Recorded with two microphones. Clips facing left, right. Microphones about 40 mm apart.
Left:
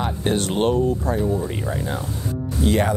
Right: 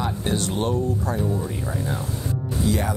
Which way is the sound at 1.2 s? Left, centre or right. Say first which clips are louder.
Left 3 dB; centre.